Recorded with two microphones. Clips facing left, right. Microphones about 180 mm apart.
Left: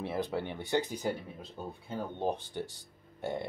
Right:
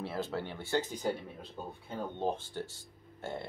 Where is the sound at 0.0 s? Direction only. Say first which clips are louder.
Left 2 dB; 15° left (ahead or behind).